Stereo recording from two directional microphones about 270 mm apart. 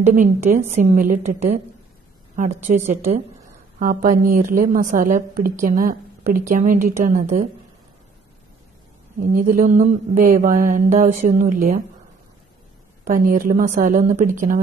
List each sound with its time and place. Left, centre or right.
0.1 s mantra: right
3.8 s speech: right
4.2 s mantra: right
9.2 s mantra: right
13.0 s mantra: right